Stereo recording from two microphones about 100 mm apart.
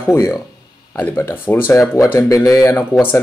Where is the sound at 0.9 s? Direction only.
20° left (ahead or behind).